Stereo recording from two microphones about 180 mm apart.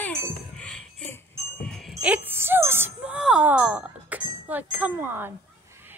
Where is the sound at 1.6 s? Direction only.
5° left (ahead or behind).